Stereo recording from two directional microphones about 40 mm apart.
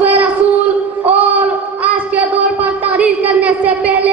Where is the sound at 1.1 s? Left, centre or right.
Right.